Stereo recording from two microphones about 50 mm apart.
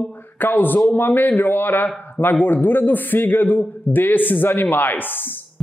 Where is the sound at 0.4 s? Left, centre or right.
Left.